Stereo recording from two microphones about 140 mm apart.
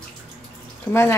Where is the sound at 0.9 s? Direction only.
15° left (ahead or behind).